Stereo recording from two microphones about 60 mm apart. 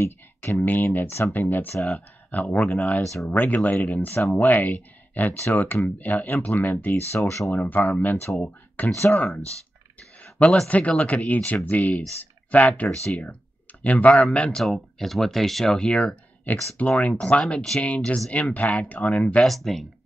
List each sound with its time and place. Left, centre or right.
0.0 s a sound: left
0.6 s speech: left
6.9 s speech: left
7.5 s speech: left
10.2 s a sound: left
10.7 s speech: left
14.6 s speech: centre; by 19.4 s left
19.4 s speech: centre